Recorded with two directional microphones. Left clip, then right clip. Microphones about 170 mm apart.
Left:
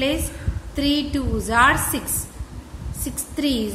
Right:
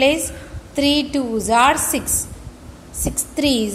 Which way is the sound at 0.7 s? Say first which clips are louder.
Right 4 dB; 20° right (ahead or behind).